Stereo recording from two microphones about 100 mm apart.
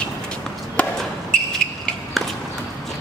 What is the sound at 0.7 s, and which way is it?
Chop, 10° left (ahead or behind).